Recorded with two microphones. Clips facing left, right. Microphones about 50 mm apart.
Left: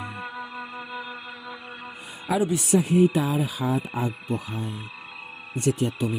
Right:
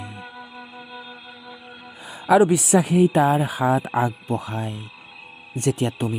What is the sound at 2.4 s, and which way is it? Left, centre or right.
Speech, right.